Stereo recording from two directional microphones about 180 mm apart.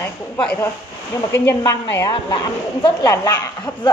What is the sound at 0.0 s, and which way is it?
Speech, 5° left (ahead or behind).